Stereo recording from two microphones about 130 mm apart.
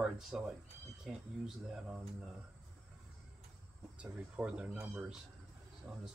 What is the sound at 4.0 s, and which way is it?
Speech, 10° right (ahead or behind).